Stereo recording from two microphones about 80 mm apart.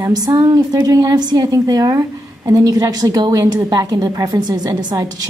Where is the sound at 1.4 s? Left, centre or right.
Right.